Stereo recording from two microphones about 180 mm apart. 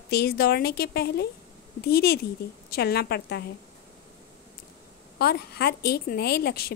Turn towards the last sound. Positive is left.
turn(degrees=60)  # may be behind; listen again after turning